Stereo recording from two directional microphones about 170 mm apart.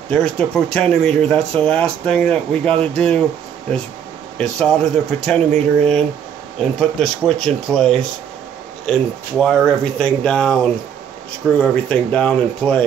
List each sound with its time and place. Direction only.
0.1 s speech: 5° left (ahead or behind)
2.7 s speech: 35° right (ahead or behind)
4.4 s speech: 5° left (ahead or behind)